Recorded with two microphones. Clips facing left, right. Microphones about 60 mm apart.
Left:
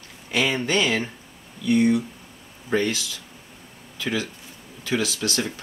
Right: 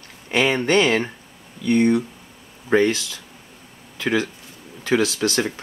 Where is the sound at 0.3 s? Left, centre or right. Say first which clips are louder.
Right 4 dB; right.